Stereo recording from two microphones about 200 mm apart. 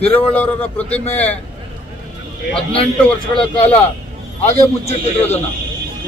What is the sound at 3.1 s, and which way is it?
A man's voice, 5° left (ahead or behind).